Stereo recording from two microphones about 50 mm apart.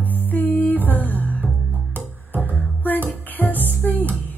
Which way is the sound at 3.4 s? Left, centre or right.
Left.